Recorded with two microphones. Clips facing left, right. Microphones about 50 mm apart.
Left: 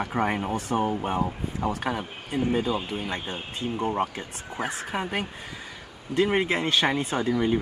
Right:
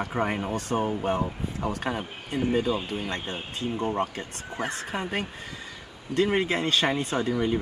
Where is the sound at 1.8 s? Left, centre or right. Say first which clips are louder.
Even; centre.